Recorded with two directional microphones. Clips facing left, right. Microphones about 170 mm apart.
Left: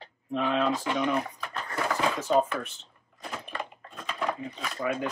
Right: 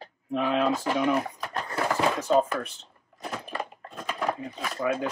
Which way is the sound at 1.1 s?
35° right (ahead or behind).